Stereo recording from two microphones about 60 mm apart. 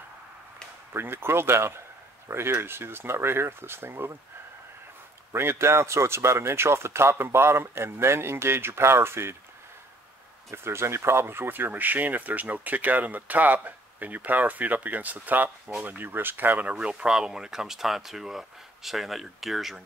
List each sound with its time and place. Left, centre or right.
0.9 s speech: right
5.3 s speech: right
10.5 s speech: right
16.7 s speech: centre